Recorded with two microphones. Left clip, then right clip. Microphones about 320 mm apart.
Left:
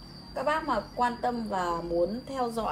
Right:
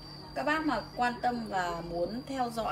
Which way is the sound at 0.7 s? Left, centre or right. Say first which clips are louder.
Left 3 dB; centre.